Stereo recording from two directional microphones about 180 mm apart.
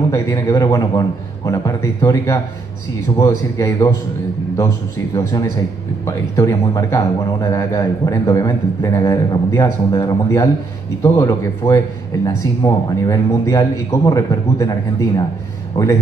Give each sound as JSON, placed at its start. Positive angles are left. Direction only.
{"t": 0.1, "sound": "a man's voice", "side_deg": 20}